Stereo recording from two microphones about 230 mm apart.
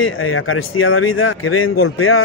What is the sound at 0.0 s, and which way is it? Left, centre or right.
A man's voice, left.